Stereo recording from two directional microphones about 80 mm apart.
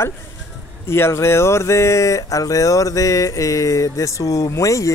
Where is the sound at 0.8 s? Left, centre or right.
Left.